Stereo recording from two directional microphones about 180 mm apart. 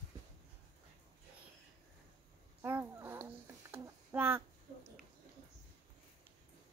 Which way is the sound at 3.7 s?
10° right (ahead or behind).